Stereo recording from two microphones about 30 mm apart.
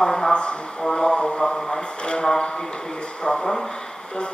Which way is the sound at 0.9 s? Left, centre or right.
Left.